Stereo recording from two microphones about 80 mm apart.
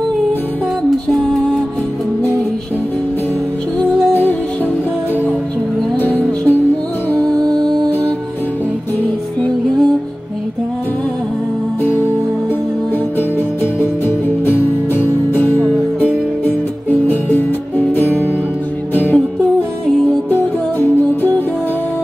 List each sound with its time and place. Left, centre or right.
4.1 s music: left
6.0 s music: left
13.7 s music: left
15.6 s music: centre
17.1 s music: left